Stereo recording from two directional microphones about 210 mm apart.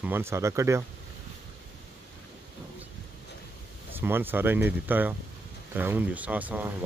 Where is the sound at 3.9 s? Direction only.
10° right (ahead or behind).